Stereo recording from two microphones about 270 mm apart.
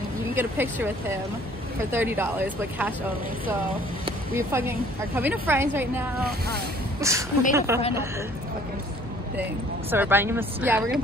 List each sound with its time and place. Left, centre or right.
0.4 s a woman's voice: centre
1.9 s a woman's voice: centre
4.3 s a woman's voice: centre
9.4 s a woman's voice: centre